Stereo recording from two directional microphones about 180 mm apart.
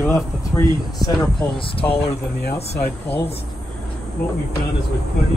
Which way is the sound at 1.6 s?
30° left (ahead or behind).